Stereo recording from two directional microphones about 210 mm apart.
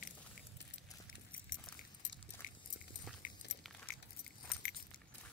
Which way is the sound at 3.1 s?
Centre (ahead or behind).